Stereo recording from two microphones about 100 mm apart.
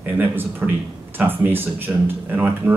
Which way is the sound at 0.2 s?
20° right (ahead or behind).